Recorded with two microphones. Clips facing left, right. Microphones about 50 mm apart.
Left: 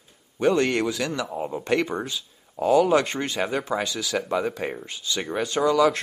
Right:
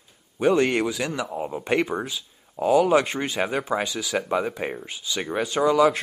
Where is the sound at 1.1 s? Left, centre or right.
Centre.